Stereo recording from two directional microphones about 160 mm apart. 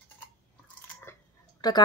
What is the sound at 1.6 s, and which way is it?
Speech, 25° left (ahead or behind).